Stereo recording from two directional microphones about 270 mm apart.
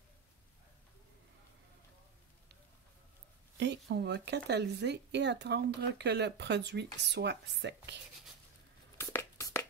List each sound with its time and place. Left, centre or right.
3.5 s speech: right
8.9 s tearing: centre